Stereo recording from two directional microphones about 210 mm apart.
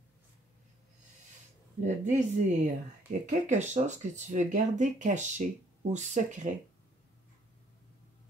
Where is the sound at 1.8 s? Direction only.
35° right (ahead or behind).